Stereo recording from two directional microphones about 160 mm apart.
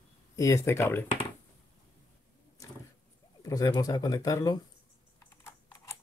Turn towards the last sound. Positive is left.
turn(degrees=15)  # may be behind; listen again after turning